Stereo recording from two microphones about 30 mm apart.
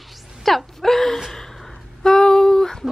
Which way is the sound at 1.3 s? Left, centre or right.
Centre.